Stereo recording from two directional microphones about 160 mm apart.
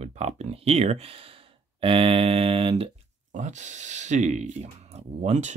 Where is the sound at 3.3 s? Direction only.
50° right (ahead or behind).